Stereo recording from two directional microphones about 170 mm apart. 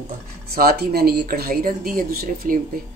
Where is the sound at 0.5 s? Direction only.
60° right (ahead or behind).